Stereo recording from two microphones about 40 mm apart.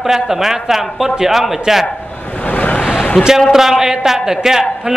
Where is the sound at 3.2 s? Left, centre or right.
Centre.